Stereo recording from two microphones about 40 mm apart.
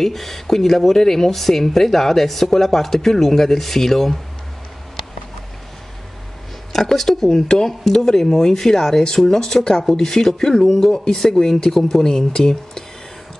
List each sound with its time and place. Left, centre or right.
0.0 s speech: centre
6.7 s speech: centre